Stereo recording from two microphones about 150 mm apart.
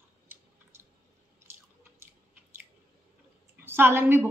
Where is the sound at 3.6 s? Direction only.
15° right (ahead or behind).